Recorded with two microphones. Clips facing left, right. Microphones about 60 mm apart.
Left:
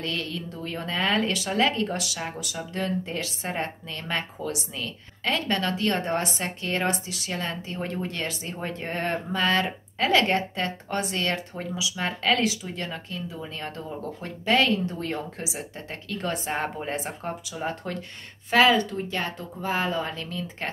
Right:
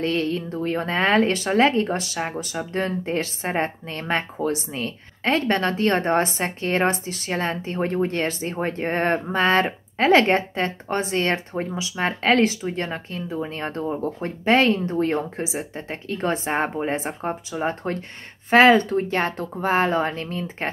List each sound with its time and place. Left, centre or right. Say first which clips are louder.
0.0 s speech: right 8 dB; right